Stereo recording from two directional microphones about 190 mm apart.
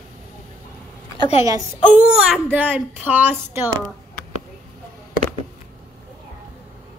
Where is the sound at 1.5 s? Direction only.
20° right (ahead or behind).